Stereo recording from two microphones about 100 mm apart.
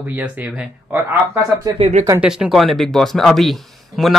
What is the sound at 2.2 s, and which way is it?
Speech, 5° right (ahead or behind).